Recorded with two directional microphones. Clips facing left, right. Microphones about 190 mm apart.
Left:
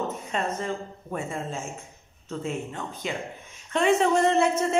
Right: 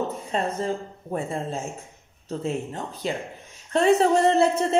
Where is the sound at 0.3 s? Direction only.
35° right (ahead or behind).